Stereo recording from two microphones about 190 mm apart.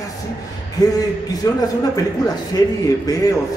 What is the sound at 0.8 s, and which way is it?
Speech, 20° left (ahead or behind).